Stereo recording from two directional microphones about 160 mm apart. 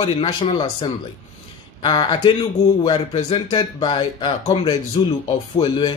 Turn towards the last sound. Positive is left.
turn(degrees=30)  # may be behind; listen again after turning